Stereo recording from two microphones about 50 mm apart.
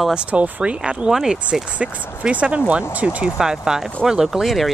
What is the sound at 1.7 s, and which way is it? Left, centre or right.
Speech, right.